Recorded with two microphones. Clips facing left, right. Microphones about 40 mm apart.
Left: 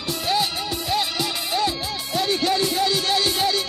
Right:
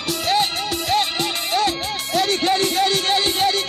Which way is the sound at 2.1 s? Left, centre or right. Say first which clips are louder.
Right 3 dB; right.